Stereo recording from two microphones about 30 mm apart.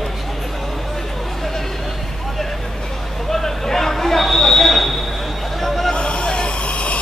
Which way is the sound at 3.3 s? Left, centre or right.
Centre.